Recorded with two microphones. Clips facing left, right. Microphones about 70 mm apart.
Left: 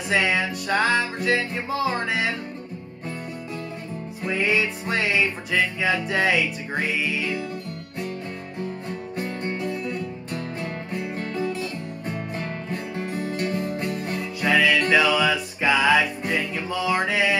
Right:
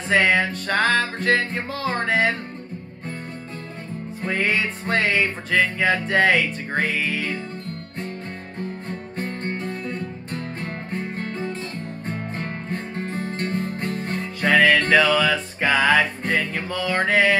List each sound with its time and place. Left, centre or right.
0.1 s music: right
4.2 s music: right
8.5 s music: right